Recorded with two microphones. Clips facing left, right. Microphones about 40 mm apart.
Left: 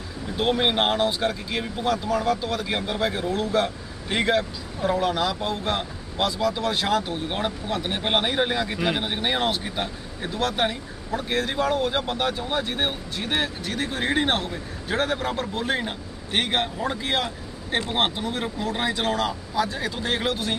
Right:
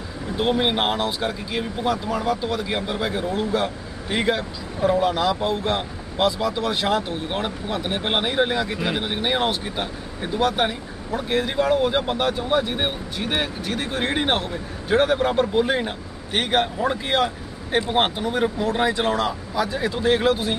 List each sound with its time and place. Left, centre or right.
0.4 s speech: centre
7.1 s speech: centre
11.2 s a man's voice: centre
11.5 s speech: centre
16.3 s speech: centre
16.9 s speech: centre
17.6 s speech: centre
19.8 s a man's voice: centre